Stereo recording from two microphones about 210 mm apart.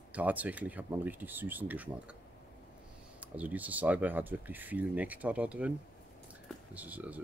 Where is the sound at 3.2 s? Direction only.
5° right (ahead or behind).